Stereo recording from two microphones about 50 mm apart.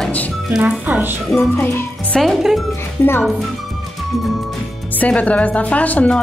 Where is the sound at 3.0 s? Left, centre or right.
Left.